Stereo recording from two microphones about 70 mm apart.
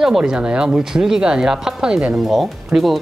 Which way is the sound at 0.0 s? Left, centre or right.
Centre.